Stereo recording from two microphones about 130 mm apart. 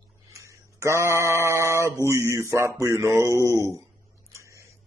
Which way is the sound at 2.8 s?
20° right (ahead or behind).